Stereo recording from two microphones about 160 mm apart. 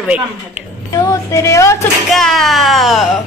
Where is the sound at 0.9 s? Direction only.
20° left (ahead or behind).